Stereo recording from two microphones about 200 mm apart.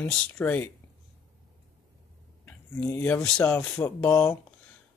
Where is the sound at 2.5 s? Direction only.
10° left (ahead or behind).